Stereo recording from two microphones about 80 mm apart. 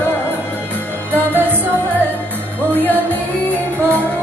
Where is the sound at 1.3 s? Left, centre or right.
Right.